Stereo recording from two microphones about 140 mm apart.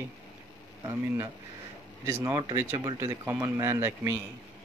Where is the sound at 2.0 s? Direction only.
20° right (ahead or behind).